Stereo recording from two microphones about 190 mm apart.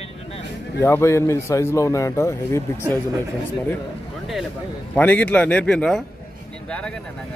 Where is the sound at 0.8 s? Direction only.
15° left (ahead or behind).